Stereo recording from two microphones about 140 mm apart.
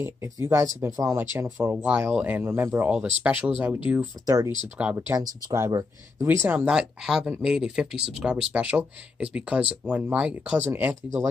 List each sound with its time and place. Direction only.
0.0 s speech: 20° right (ahead or behind)